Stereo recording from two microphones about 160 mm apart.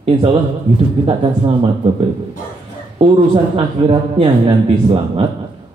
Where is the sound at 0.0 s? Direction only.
30° right (ahead or behind).